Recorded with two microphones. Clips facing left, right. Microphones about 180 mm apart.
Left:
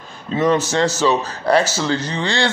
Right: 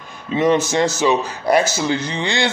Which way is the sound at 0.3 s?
15° right (ahead or behind).